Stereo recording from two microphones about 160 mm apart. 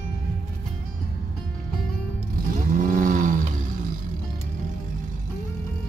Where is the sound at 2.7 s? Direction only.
55° right (ahead or behind).